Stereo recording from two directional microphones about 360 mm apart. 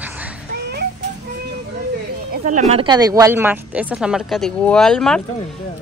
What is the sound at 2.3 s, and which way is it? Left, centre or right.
Speech, right.